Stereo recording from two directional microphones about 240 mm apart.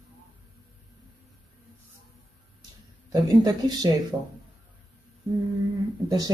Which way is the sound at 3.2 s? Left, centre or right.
Centre.